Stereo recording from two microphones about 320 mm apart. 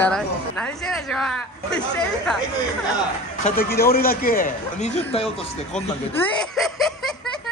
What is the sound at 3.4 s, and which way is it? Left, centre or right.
A man's voice, left.